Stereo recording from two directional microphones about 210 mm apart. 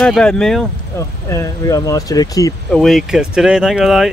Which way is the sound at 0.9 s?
15° left (ahead or behind).